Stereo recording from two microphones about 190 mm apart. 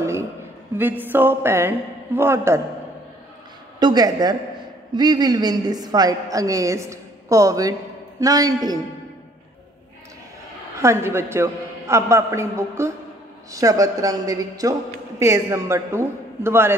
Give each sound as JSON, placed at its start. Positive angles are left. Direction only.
{"t": 0.0, "sound": "a sound", "side_deg": -15}
{"t": 0.7, "sound": "a man's voice", "side_deg": -10}
{"t": 3.8, "sound": "a woman's voice", "side_deg": -20}
{"t": 10.8, "sound": "a man's voice", "side_deg": -15}